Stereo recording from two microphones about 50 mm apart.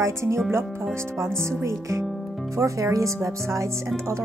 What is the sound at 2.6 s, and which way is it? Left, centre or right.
Speech, right.